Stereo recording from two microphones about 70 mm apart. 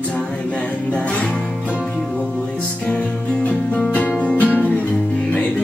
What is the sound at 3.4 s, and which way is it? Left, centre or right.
Music, left.